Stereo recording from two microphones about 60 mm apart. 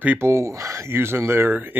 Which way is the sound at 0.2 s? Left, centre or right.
Right.